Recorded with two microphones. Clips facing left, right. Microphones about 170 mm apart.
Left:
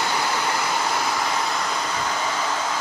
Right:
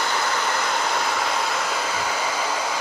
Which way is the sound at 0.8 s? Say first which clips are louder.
Even; centre (ahead or behind).